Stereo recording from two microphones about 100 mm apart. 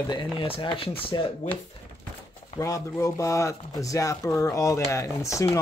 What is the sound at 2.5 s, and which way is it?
Speech, 35° left (ahead or behind).